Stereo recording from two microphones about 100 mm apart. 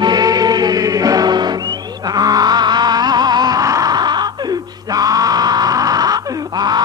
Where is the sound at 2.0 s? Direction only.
40° right (ahead or behind).